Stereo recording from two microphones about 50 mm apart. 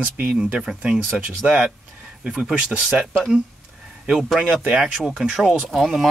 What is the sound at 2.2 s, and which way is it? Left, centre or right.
Speech, centre.